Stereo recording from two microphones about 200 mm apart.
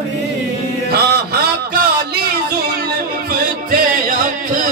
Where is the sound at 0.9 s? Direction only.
50° right (ahead or behind).